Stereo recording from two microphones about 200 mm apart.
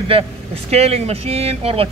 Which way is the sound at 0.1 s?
30° right (ahead or behind).